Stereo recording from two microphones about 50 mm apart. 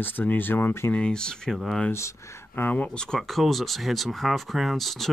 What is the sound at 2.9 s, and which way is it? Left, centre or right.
Speech, centre.